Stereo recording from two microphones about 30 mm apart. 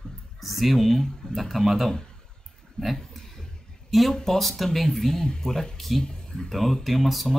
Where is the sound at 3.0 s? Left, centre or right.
Centre.